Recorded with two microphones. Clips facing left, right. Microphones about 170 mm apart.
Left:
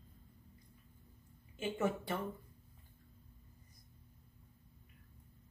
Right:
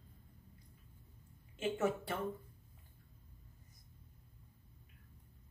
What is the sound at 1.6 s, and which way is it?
Speech, 5° right (ahead or behind).